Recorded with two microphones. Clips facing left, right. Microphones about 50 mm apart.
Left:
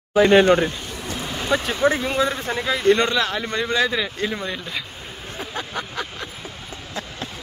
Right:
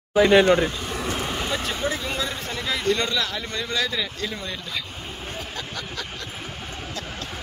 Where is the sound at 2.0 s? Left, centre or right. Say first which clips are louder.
Left 7 dB; left.